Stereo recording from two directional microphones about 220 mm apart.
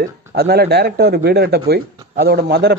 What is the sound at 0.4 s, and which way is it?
A man's voice, 45° right (ahead or behind).